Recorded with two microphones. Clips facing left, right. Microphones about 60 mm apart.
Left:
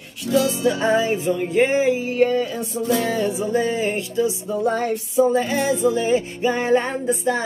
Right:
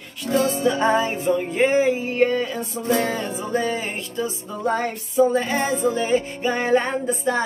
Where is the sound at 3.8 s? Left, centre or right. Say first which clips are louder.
Left 6 dB; right.